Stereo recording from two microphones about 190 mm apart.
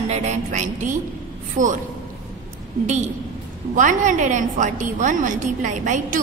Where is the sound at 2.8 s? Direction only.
35° right (ahead or behind).